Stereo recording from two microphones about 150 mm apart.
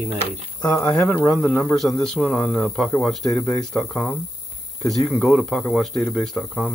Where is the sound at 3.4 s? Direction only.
15° left (ahead or behind).